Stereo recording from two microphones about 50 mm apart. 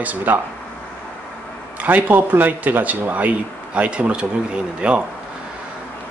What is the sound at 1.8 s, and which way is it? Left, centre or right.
A man's voice, right.